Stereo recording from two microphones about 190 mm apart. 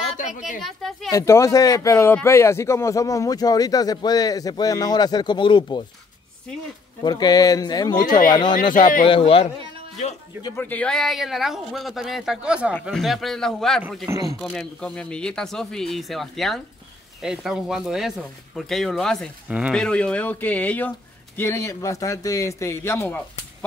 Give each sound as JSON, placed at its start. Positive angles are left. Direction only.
{"t": 0.6, "sound": "speech", "side_deg": 0}
{"t": 1.1, "sound": "speech", "side_deg": 15}
{"t": 7.0, "sound": "speech", "side_deg": 20}
{"t": 8.5, "sound": "speech", "side_deg": 45}
{"t": 9.0, "sound": "speech", "side_deg": 30}
{"t": 10.4, "sound": "speech", "side_deg": 10}
{"t": 14.0, "sound": "speech", "side_deg": -15}
{"t": 14.4, "sound": "a man's voice", "side_deg": 5}